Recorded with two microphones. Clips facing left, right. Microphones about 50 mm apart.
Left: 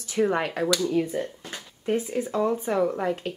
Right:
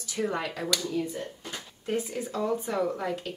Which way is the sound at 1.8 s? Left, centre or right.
Left.